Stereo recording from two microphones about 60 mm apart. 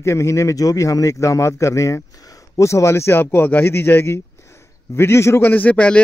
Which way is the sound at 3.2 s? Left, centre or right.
Left.